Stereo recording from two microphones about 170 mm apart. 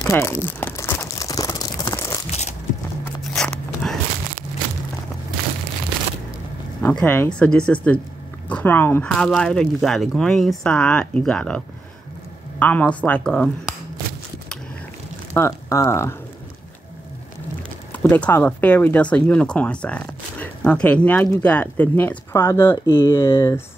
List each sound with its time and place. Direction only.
0.0 s crumpling: 15° left (ahead or behind)
3.3 s zipper: 5° left (ahead or behind)
6.8 s speech: 10° left (ahead or behind)
15.3 s speech: 15° left (ahead or behind)
17.9 s speech: 10° left (ahead or behind)